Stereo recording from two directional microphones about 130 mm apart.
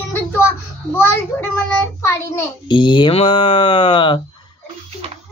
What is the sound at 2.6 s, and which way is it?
Speech, 40° left (ahead or behind).